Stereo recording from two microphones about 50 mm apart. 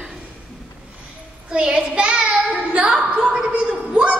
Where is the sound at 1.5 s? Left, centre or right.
Centre.